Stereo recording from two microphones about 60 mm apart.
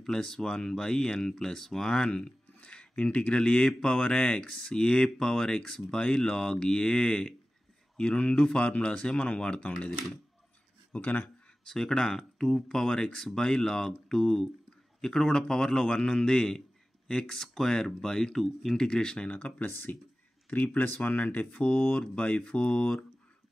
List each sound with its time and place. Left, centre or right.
0.0 s speech: centre
10.9 s speech: left
11.6 s speech: centre
19.3 s speech: left